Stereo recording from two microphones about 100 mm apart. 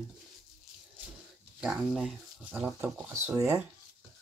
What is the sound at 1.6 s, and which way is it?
Speech, 5° right (ahead or behind).